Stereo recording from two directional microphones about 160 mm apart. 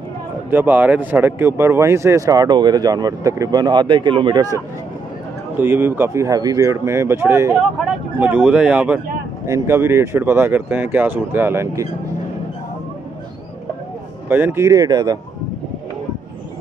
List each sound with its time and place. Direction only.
0.5 s speech: 10° right (ahead or behind); by 4.6 s 25° right (ahead or behind)
5.6 s speech: 15° right (ahead or behind)
14.3 s speech: 15° right (ahead or behind)